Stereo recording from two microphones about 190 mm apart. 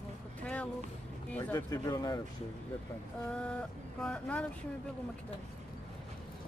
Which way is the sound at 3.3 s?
5° left (ahead or behind).